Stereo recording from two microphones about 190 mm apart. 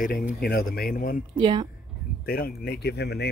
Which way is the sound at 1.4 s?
25° right (ahead or behind).